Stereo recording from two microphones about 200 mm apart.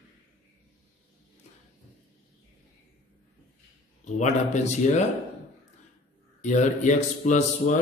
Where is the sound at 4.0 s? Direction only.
35° left (ahead or behind).